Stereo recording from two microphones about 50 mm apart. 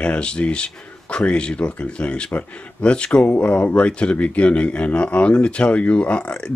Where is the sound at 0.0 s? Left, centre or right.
Left.